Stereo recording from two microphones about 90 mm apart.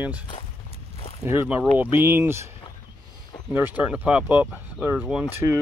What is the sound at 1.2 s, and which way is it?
Speech, 25° right (ahead or behind).